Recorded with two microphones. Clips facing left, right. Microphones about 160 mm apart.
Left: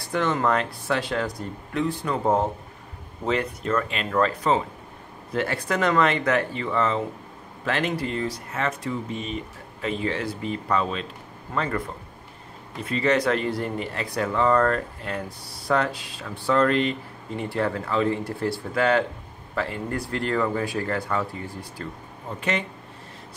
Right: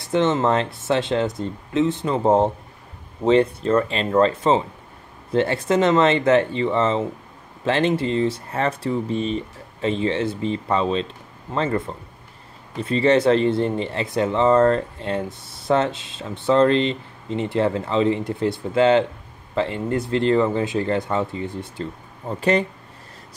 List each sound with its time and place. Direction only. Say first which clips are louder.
0.0 s speech: right 5 dB; 25° right (ahead or behind)
12.8 s speech: right 6 dB; 30° right (ahead or behind)
22.4 s speech: right 8 dB; 35° right (ahead or behind)